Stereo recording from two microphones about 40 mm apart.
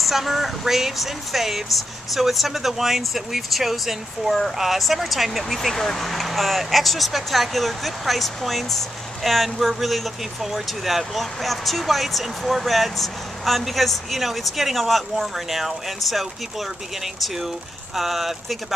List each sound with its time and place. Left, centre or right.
0.0 s speech: centre